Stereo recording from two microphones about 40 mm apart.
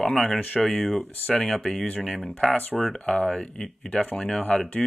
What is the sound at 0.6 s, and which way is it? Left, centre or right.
Speech, centre.